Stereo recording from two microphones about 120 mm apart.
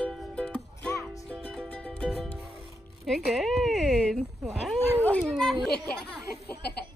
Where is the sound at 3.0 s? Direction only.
Centre (ahead or behind).